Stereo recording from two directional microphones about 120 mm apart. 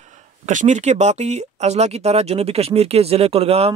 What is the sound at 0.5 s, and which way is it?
A man's voice, 90° right.